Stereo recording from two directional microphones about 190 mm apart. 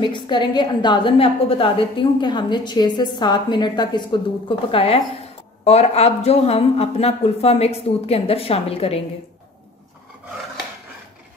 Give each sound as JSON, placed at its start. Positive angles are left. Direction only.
{"t": 0.0, "sound": "a woman's voice", "side_deg": 25}